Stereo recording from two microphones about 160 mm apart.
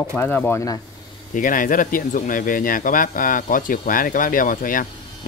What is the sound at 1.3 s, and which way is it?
Speech, 55° left (ahead or behind).